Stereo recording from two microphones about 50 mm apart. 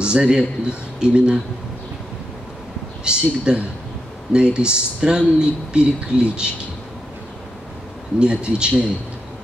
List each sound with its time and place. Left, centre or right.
0.0 s speech: centre
3.0 s speech: centre
8.2 s speech: centre